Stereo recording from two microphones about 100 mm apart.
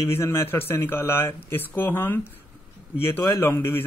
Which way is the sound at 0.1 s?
25° left (ahead or behind).